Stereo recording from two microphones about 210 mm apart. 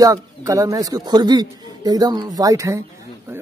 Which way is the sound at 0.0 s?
15° right (ahead or behind).